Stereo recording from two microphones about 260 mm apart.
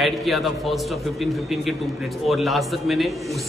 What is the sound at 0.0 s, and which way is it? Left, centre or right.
A man's voice, centre.